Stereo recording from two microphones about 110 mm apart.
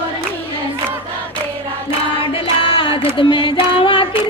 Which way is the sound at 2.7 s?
50° left (ahead or behind).